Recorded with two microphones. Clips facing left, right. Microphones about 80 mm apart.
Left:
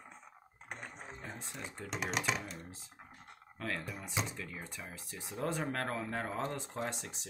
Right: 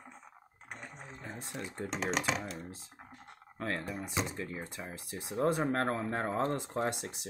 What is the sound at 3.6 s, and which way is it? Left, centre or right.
Speech, right.